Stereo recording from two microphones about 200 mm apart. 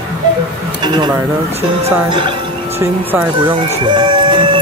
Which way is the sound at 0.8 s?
20° right (ahead or behind).